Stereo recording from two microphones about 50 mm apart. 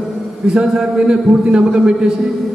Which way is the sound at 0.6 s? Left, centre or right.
Centre.